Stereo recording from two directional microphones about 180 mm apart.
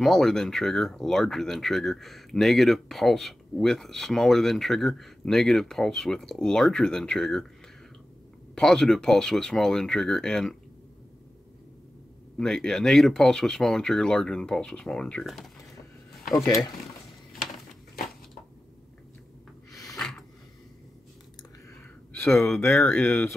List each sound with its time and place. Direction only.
0.0 s speech: centre (ahead or behind)
8.5 s speech: 5° left (ahead or behind)
12.4 s speech: 5° left (ahead or behind)
16.4 s speech: 20° left (ahead or behind)
19.9 s a sound: 5° left (ahead or behind)
22.1 s speech: 10° left (ahead or behind)